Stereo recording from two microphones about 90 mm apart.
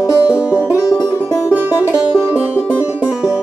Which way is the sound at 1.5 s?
15° right (ahead or behind).